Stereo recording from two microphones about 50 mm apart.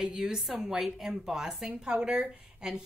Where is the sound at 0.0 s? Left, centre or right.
Centre.